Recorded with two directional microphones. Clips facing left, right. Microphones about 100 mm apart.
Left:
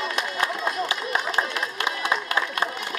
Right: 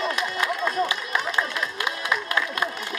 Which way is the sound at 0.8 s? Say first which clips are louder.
Even; 30° left (ahead or behind).